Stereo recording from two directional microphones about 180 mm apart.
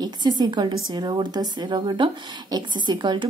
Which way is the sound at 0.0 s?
25° right (ahead or behind).